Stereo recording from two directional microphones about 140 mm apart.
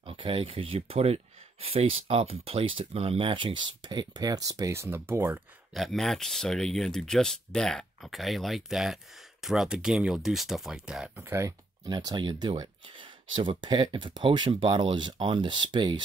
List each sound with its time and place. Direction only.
0.0 s speech: 40° right (ahead or behind); by 5.4 s 15° right (ahead or behind)
5.8 s speech: centre (ahead or behind)
11.2 s speech: 20° right (ahead or behind)